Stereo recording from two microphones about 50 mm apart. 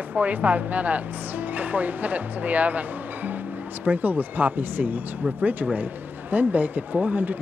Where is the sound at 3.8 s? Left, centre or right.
Right.